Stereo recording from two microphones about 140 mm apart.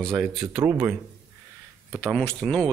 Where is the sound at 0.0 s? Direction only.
Centre (ahead or behind).